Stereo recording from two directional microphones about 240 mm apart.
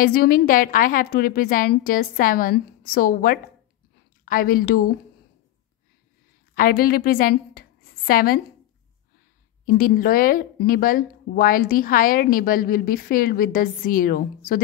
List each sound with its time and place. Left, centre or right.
0.0 s a woman's voice: left
6.5 s a woman's voice: left
9.7 s speech: left